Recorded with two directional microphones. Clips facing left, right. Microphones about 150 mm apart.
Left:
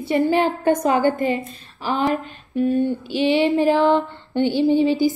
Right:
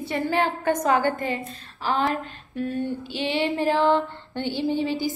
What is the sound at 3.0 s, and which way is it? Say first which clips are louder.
Music: left 7 dB; 15° left (ahead or behind).